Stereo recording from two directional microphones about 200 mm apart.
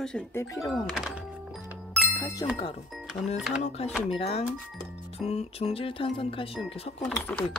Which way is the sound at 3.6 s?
30° left (ahead or behind).